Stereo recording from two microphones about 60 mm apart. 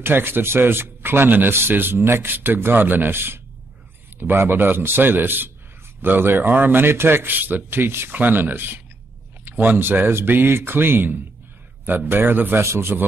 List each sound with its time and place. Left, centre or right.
0.0 s a man's voice: right
12.6 s a man's voice: right